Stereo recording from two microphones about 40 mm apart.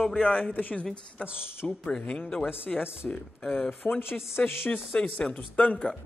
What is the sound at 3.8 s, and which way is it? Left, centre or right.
Speech, left.